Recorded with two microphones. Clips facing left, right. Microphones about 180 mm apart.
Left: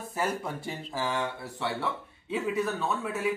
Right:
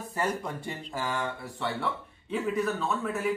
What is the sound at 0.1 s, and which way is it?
Speech, 5° left (ahead or behind).